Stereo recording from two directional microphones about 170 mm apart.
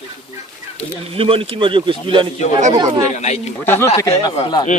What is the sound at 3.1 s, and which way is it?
Speech, 40° left (ahead or behind).